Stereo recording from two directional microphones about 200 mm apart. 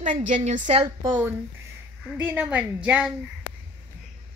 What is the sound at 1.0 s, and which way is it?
A woman's voice, 10° right (ahead or behind).